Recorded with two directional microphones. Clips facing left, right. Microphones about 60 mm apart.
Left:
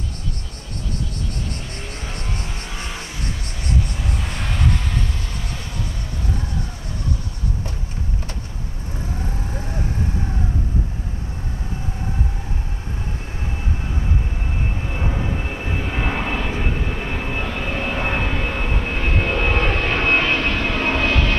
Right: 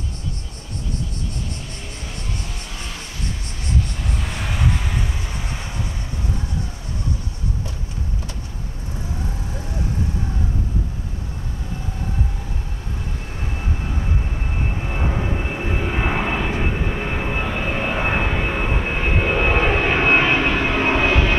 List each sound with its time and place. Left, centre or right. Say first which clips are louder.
2.3 s vehicle: left 2 dB; left
3.6 s vehicle: left 1 dB; centre
14.0 s vehicle: even; centre